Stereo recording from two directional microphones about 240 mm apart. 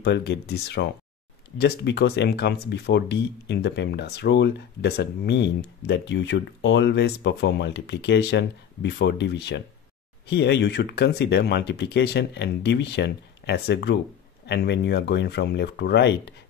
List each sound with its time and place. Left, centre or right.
0.0 s speech: left